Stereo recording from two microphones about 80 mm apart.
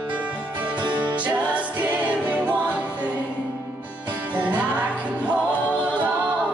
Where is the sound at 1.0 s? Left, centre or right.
Centre.